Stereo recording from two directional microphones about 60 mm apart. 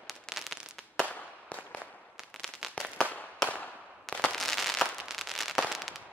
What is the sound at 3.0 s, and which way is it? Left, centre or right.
Firecracker, left.